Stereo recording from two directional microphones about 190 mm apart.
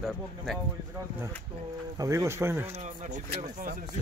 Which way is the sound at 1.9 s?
15° right (ahead or behind).